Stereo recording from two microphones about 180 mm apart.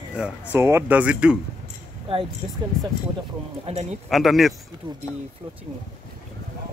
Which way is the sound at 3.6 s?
40° right (ahead or behind).